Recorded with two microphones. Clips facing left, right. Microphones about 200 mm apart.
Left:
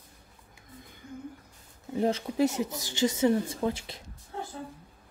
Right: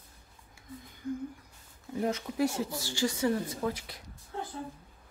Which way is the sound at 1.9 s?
30° left (ahead or behind).